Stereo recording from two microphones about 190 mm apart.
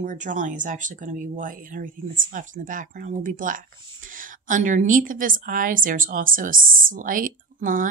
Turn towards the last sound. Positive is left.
turn(degrees=-45)  # may be behind; listen again after turning